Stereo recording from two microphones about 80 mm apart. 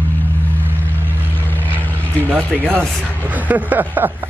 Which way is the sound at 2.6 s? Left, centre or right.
Centre.